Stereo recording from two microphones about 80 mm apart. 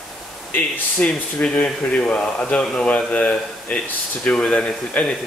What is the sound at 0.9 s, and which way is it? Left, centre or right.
Speech, centre.